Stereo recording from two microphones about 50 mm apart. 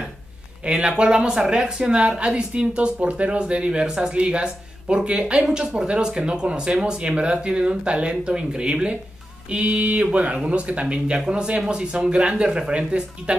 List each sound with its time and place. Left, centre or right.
0.7 s a woman's voice: right